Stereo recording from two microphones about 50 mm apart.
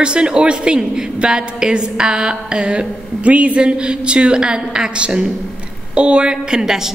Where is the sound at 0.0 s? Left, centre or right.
Centre.